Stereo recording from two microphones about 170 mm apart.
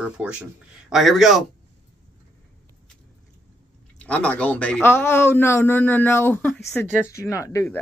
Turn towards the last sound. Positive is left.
turn(degrees=15)  # may be behind; listen again after turning